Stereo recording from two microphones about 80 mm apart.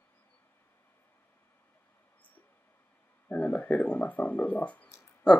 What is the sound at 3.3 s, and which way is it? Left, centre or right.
Speech, centre.